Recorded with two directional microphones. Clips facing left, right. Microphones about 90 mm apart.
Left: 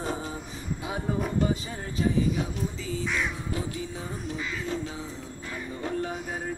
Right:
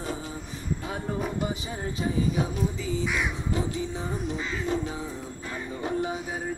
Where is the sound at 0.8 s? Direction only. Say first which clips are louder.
Left 3 dB; centre (ahead or behind).